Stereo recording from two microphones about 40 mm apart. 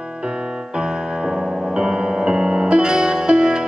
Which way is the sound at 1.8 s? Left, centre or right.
Centre.